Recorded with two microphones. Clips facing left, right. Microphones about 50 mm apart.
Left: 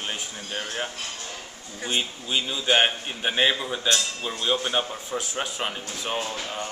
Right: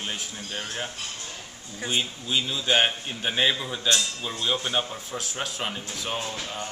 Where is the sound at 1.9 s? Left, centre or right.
Centre.